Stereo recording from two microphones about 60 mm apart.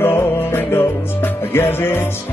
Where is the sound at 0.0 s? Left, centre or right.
Left.